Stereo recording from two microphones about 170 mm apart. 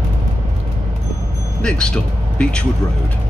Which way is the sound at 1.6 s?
5° left (ahead or behind).